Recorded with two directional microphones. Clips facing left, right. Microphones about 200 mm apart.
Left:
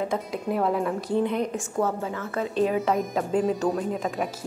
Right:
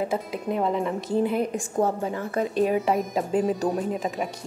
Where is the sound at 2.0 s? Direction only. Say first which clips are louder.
Right 3 dB; 15° right (ahead or behind).